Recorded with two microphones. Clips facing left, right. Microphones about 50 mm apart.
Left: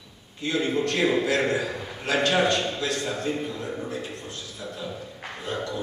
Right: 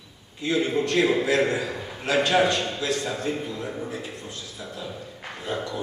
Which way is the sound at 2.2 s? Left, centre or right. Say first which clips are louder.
Left 1 dB; centre.